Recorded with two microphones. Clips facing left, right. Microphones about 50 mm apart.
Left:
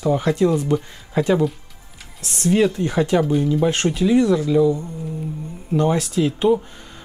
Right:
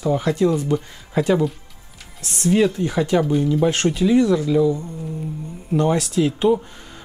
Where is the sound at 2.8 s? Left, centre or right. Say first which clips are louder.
Left 1 dB; left.